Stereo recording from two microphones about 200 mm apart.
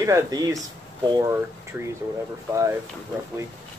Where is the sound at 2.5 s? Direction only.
15° right (ahead or behind).